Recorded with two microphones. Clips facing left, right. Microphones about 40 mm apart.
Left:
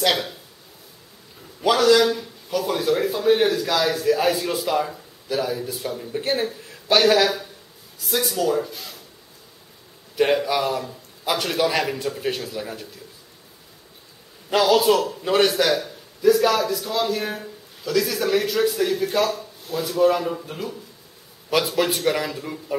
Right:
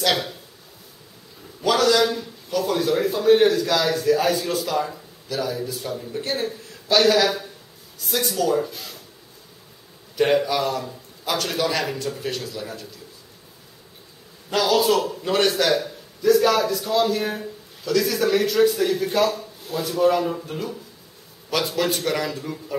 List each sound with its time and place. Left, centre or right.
0.0 s speech: centre
1.7 s a man's voice: centre
10.1 s a man's voice: centre
12.2 s a man's voice: centre
14.5 s a man's voice: centre